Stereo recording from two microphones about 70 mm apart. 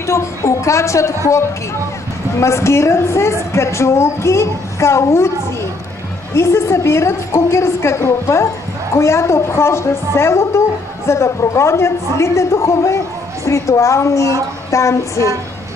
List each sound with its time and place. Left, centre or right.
0.0 s a woman's voice: left
2.3 s a woman's voice: left
6.3 s a woman's voice: left